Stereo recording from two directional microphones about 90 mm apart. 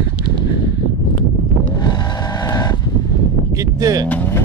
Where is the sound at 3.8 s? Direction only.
40° right (ahead or behind).